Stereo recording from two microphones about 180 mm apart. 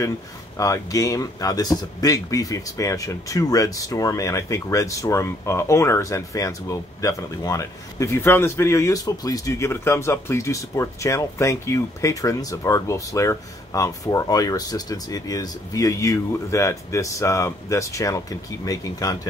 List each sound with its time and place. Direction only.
0.6 s speech: 20° left (ahead or behind)